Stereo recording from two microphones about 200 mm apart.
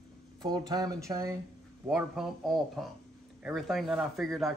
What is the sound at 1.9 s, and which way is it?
Speech, 5° right (ahead or behind).